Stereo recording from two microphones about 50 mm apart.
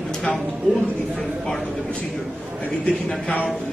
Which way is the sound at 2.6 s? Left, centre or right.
Left.